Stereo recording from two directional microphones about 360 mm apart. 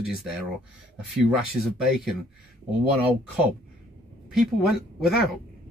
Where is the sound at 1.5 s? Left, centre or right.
Centre.